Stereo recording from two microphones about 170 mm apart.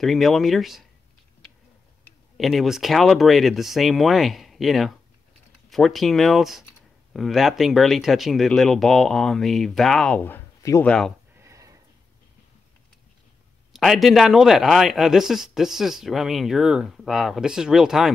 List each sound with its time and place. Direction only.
0.0 s speech: centre (ahead or behind)
2.3 s speech: centre (ahead or behind); by 10.9 s 15° left (ahead or behind)
10.9 s speech: 5° left (ahead or behind)
11.3 s a sound: 20° right (ahead or behind)
13.7 s speech: centre (ahead or behind)